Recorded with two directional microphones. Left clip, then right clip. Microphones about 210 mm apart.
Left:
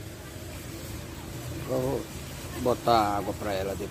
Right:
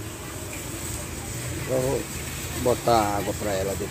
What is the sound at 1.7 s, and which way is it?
Speech, 25° left (ahead or behind).